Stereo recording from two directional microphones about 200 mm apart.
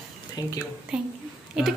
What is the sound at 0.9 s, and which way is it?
Speech, 5° right (ahead or behind).